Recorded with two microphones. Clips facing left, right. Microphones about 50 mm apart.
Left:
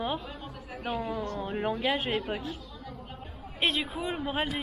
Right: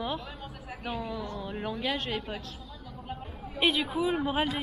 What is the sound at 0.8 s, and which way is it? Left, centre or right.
Speech, left.